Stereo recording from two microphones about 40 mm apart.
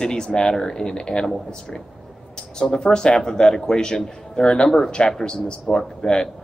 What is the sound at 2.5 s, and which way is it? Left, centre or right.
A man's voice, centre.